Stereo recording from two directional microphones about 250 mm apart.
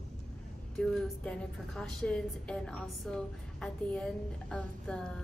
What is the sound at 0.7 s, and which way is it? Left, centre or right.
A woman's voice, centre.